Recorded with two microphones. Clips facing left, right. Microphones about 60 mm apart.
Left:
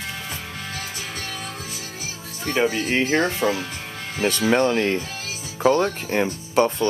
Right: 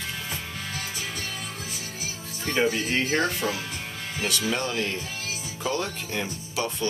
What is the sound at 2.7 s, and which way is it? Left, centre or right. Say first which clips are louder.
Speech: left 4 dB; left.